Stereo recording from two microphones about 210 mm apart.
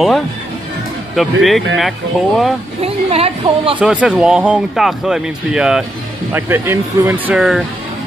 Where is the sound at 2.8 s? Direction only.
30° right (ahead or behind).